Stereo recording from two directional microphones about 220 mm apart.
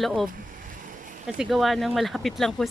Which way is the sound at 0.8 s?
35° right (ahead or behind).